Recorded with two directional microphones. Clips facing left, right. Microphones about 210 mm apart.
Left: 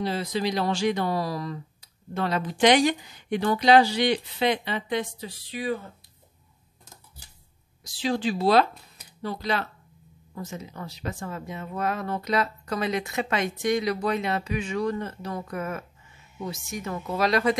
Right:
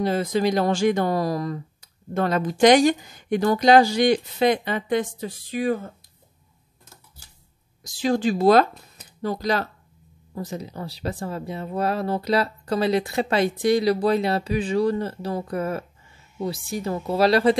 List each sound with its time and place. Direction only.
0.0 s speech: 50° right (ahead or behind)
7.8 s speech: 45° right (ahead or behind)